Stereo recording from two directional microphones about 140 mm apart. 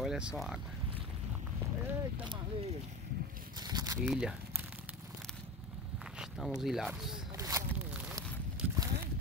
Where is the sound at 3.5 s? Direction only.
30° right (ahead or behind).